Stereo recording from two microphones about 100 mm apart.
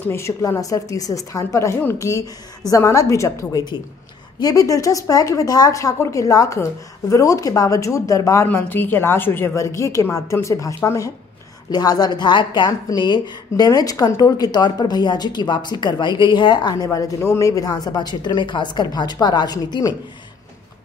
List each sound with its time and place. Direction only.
0.0 s speech: 25° left (ahead or behind)
8.5 s a woman's voice: 20° left (ahead or behind); by 19.9 s 40° left (ahead or behind)